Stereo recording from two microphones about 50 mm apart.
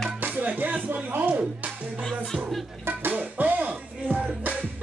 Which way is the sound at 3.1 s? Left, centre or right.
Right.